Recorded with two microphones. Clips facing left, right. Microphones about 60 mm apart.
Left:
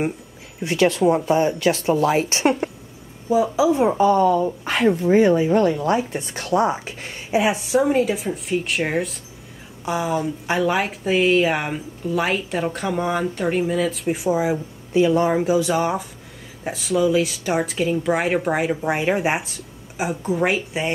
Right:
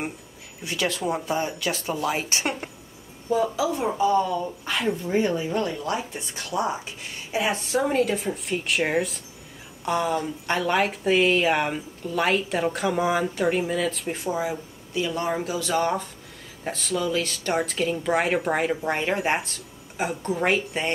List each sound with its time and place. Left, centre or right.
0.7 s speech: left
3.3 s speech: centre
4.2 s a woman's voice: left
7.2 s speech: centre
14.0 s speech: centre